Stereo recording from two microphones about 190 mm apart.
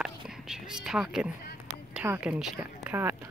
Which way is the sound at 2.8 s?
10° right (ahead or behind).